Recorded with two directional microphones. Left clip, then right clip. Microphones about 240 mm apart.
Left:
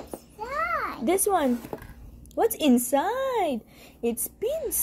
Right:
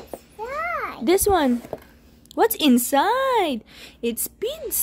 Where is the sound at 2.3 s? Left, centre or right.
Right.